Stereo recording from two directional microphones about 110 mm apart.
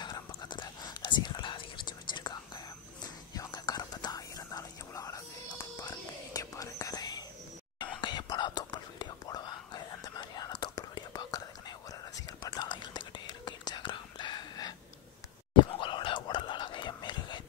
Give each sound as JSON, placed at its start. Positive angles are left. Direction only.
{"t": 0.0, "sound": "whispering", "side_deg": 45}
{"t": 12.4, "sound": "whispering", "side_deg": 40}